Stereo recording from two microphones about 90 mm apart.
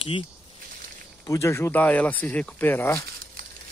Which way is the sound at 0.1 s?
90° left.